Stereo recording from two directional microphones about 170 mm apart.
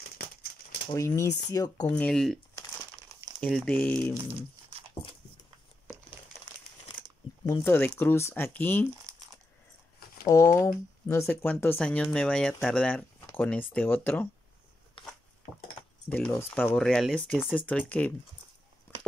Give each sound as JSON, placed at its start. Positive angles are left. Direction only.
{"t": 0.9, "sound": "speech", "side_deg": 15}
{"t": 2.0, "sound": "speech", "side_deg": 5}
{"t": 4.4, "sound": "a sound", "side_deg": -35}
{"t": 7.4, "sound": "speech", "side_deg": 15}
{"t": 9.1, "sound": "coin", "side_deg": -20}
{"t": 10.2, "sound": "speech", "side_deg": 20}
{"t": 16.1, "sound": "speech", "side_deg": 10}